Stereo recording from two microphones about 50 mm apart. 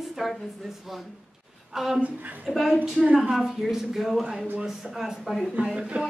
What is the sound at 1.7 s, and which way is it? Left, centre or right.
Speech, centre.